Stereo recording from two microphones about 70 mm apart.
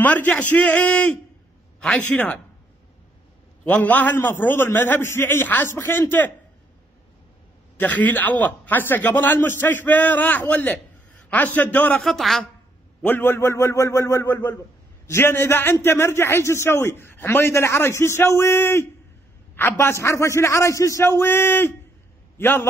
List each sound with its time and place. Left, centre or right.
0.0 s a man's voice: left
3.6 s a man's voice: left
7.8 s a man's voice: left
12.0 s a man's voice: centre
13.0 s a man's voice: left
14.2 s a man's voice: left
21.0 s a man's voice: left